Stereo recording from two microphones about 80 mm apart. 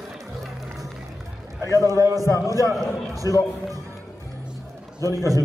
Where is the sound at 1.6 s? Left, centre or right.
Right.